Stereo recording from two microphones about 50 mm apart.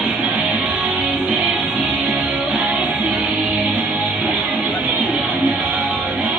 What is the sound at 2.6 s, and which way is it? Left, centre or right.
Music, right.